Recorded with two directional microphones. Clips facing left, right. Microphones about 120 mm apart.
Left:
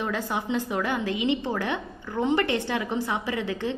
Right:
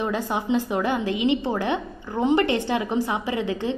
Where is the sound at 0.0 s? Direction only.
20° right (ahead or behind).